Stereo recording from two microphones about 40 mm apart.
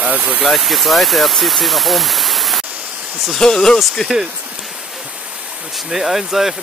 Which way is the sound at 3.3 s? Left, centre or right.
Centre.